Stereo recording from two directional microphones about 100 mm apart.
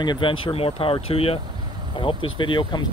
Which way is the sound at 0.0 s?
50° left (ahead or behind).